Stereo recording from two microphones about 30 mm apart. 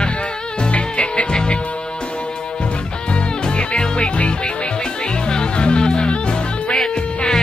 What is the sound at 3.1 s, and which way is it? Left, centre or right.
Music, left.